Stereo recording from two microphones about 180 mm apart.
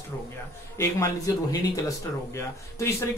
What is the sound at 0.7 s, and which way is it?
Speech, 15° left (ahead or behind).